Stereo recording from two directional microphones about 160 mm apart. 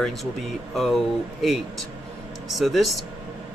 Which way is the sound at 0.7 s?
Centre (ahead or behind).